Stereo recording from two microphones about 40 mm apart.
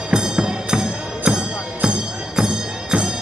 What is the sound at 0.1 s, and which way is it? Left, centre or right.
Music, centre.